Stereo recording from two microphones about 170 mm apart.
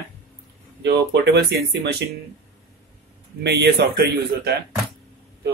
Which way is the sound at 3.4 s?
80° right.